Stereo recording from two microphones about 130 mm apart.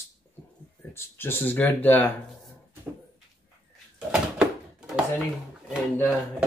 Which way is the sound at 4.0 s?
5° right (ahead or behind).